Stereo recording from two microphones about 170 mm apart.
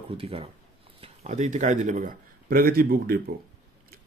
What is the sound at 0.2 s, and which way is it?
Speech, 35° right (ahead or behind).